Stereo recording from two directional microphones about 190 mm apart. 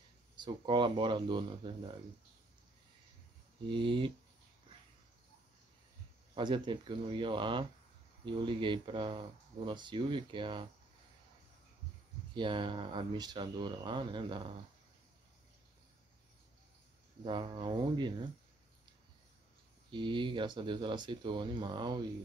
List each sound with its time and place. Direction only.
0.4 s speech: 25° right (ahead or behind)
3.6 s speech: 25° right (ahead or behind)
6.3 s speech: 25° right (ahead or behind)
12.4 s speech: 25° right (ahead or behind)
17.2 s speech: 25° right (ahead or behind)
19.9 s speech: 25° right (ahead or behind)